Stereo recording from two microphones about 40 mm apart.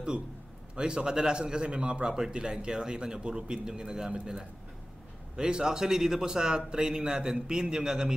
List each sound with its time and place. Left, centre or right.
0.7 s a man's voice: right
2.0 s a man's voice: centre
5.3 s a man's voice: centre